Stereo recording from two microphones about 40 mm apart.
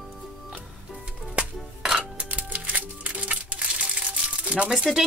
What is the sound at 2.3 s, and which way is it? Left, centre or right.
Music, right.